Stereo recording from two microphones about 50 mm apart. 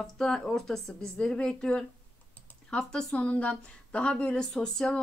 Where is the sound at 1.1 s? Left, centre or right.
Centre.